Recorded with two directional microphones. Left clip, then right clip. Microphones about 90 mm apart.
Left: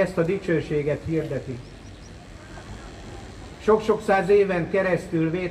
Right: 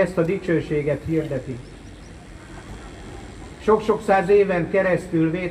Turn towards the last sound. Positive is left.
turn(degrees=-10)  # may be behind; listen again after turning